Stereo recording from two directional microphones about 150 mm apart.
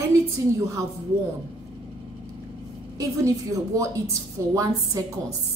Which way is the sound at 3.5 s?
20° right (ahead or behind).